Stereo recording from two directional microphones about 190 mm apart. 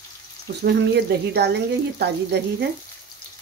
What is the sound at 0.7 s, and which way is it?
Speech, 60° right (ahead or behind).